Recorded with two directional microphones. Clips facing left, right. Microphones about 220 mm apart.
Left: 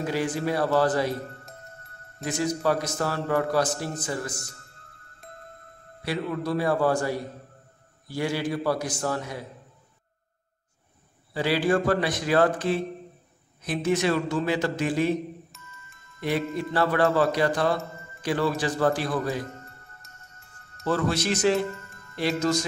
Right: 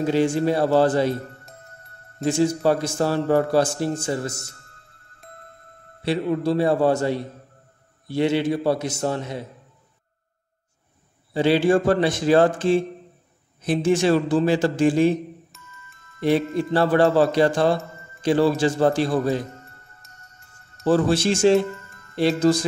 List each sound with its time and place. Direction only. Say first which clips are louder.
0.0 s a man's voice: right 7 dB; 25° right (ahead or behind)
2.2 s a man's voice: right 6 dB; 30° right (ahead or behind)
6.0 s a man's voice: right 6 dB; 30° right (ahead or behind)
11.3 s a man's voice: right 6 dB; 25° right (ahead or behind)
15.5 s music: right 1 dB; centre (ahead or behind)
16.2 s a man's voice: right 7 dB; 30° right (ahead or behind)
20.8 s a man's voice: right 7 dB; 30° right (ahead or behind)
22.4 s music: right 7 dB; 30° right (ahead or behind)